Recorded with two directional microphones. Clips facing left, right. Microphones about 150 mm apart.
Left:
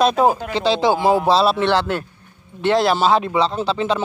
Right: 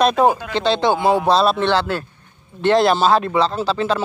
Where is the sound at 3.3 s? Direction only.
Centre (ahead or behind).